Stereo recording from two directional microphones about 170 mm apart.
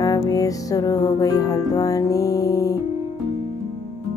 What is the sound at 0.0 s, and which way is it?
Speech, 20° left (ahead or behind).